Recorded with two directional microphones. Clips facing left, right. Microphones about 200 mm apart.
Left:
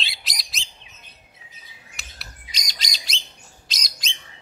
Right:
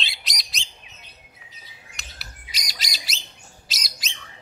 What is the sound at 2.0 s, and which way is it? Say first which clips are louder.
Bird: even; centre (ahead or behind).